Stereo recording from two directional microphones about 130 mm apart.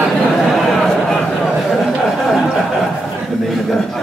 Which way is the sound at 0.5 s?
Centre (ahead or behind).